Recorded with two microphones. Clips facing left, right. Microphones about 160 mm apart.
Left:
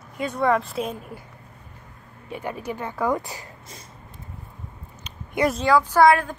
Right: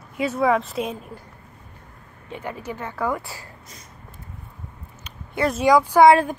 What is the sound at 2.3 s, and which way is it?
Speech, 15° left (ahead or behind).